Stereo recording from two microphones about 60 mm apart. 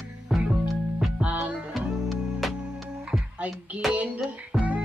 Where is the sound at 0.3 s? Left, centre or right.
Centre.